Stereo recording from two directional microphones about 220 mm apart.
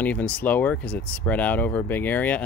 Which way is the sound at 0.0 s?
5° left (ahead or behind).